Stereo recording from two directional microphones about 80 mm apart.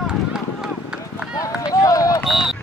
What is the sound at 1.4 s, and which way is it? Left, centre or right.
Run, left.